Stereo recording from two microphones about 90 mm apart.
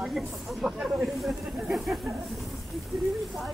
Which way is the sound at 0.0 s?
5° right (ahead or behind).